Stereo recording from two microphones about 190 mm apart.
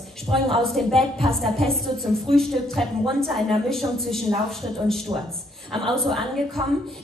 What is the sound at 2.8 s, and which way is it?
A woman's voice, centre (ahead or behind).